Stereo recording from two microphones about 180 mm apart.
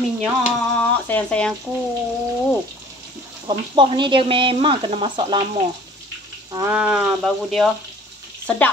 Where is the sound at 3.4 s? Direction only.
30° right (ahead or behind).